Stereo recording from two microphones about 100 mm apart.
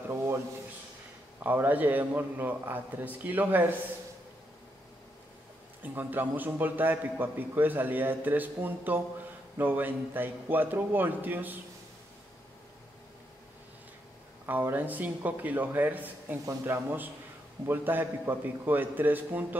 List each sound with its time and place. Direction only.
1.4 s a man's voice: 20° right (ahead or behind)
5.8 s a man's voice: 20° right (ahead or behind)
14.4 s a man's voice: 20° right (ahead or behind)